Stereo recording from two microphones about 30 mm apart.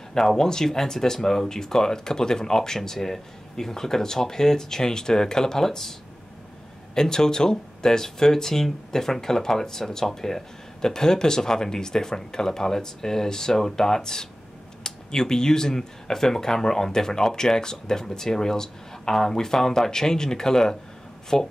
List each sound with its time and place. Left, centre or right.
0.2 s speech: centre
7.0 s speech: left